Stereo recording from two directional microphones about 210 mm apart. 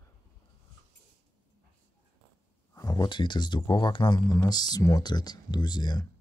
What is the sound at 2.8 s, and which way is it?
Speech, 20° left (ahead or behind).